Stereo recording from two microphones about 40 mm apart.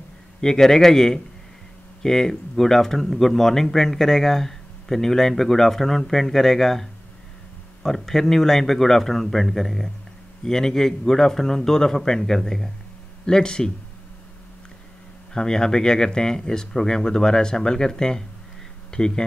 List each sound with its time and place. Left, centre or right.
0.4 s speech: centre
15.3 s speech: centre